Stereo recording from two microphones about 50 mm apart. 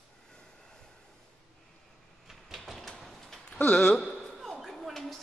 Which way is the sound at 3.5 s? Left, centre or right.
Centre.